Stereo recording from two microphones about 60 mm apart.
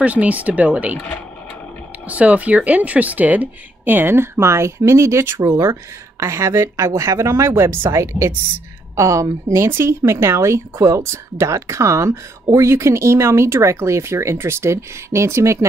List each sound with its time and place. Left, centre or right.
0.0 s speech: right
2.0 s speech: right
8.0 s a woman's voice: right
9.7 s speech: right